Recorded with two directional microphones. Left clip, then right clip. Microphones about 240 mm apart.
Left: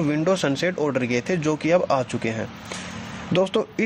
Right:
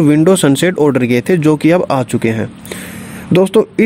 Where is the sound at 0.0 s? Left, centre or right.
Right.